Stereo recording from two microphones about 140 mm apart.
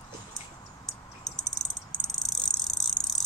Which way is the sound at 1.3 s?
Centre (ahead or behind).